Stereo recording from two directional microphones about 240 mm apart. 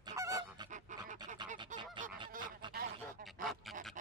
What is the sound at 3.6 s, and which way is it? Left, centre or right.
Dog, centre.